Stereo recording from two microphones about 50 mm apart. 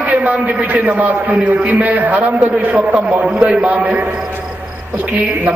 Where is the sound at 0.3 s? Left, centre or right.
Right.